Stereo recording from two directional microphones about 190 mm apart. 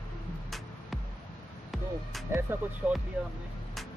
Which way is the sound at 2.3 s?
15° right (ahead or behind).